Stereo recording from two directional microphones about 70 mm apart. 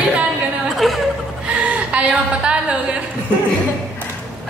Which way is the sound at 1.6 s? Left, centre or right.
Centre.